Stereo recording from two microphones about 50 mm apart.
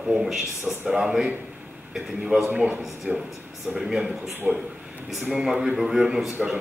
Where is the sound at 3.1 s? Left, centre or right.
Right.